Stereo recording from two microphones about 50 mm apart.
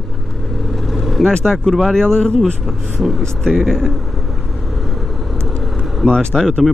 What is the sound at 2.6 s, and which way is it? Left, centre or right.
Speech, centre.